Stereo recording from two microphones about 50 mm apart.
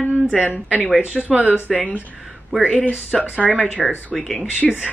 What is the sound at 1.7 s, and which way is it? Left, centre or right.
Speech, left.